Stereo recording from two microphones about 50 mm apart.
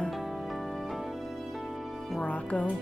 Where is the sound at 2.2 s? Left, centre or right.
Left.